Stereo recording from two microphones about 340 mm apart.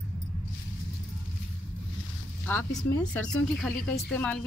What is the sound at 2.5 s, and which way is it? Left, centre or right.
Speech, centre.